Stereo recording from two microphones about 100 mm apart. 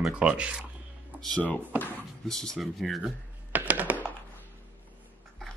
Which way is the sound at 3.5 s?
15° right (ahead or behind).